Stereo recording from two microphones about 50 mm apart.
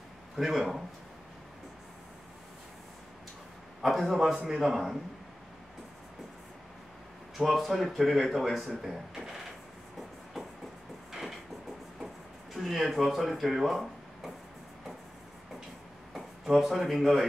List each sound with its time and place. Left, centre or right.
0.4 s speech: centre
3.8 s speech: centre
7.3 s speech: centre
11.1 s vehicle: centre
12.5 s speech: centre
16.1 s speech: centre